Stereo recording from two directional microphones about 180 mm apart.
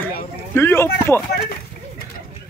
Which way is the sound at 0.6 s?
15° left (ahead or behind).